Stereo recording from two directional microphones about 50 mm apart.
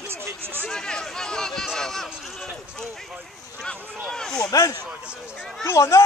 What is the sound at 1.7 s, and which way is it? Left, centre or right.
Run, centre.